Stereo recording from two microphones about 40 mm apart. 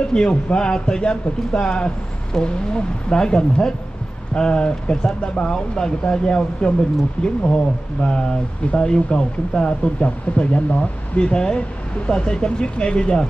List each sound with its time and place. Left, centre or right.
0.0 s speech: left